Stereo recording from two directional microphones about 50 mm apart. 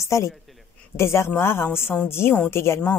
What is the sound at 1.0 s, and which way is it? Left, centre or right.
Speech, left.